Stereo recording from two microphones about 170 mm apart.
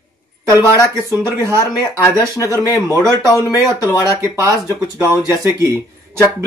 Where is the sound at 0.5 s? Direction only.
20° left (ahead or behind).